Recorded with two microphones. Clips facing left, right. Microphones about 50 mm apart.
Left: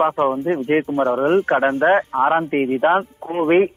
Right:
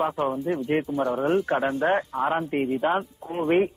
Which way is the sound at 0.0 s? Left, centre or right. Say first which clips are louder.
Left 7 dB; left.